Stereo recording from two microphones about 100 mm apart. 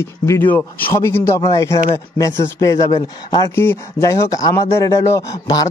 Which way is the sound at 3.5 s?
25° left (ahead or behind).